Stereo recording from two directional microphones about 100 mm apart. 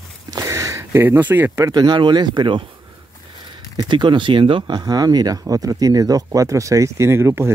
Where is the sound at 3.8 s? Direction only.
50° right (ahead or behind).